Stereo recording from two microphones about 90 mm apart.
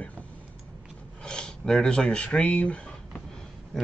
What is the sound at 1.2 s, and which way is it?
Speech, 10° left (ahead or behind).